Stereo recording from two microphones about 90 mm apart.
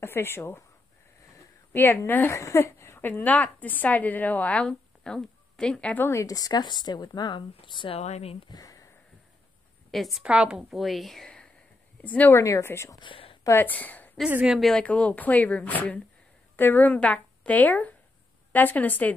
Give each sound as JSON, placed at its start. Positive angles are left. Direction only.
{"t": 0.0, "sound": "speech", "side_deg": 25}
{"t": 1.7, "sound": "a woman's voice", "side_deg": 20}
{"t": 6.0, "sound": "speech", "side_deg": 40}
{"t": 8.5, "sound": "sniff", "side_deg": 40}
{"t": 9.8, "sound": "a woman's voice", "side_deg": 0}
{"t": 12.0, "sound": "speech", "side_deg": 20}
{"t": 12.4, "sound": "speech", "side_deg": 30}
{"t": 13.0, "sound": "a sound", "side_deg": 75}
{"t": 13.6, "sound": "a woman's voice", "side_deg": 20}
{"t": 14.4, "sound": "speech", "side_deg": -5}
{"t": 14.7, "sound": "speech", "side_deg": 15}